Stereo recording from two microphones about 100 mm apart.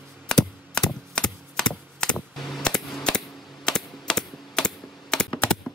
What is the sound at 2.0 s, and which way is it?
Computer keyboard, 10° left (ahead or behind).